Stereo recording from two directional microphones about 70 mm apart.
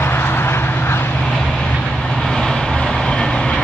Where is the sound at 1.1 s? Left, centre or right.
Centre.